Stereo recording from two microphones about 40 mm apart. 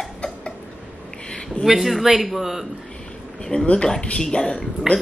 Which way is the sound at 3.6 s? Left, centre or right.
Left.